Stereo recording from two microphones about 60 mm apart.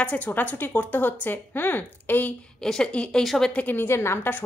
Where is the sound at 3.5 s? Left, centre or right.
Left.